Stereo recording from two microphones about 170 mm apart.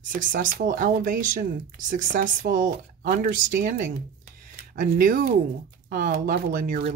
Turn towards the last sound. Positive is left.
turn(degrees=-55)  # may be behind; listen again after turning